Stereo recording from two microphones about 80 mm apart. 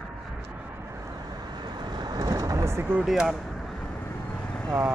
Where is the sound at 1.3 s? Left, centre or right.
Right.